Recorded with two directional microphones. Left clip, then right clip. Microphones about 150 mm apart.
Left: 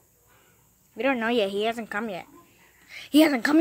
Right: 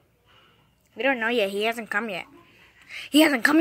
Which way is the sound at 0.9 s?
15° left (ahead or behind).